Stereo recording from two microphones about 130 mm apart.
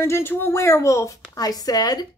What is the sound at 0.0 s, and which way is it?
Speech, 20° left (ahead or behind).